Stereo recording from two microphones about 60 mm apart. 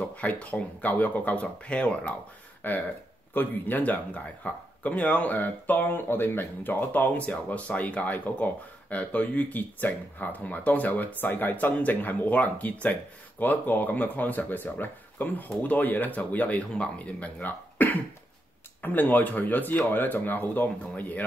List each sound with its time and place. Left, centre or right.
0.1 s speech: left
2.6 s speech: left